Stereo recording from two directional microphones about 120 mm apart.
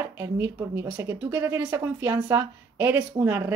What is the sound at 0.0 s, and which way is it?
Speech, 20° right (ahead or behind).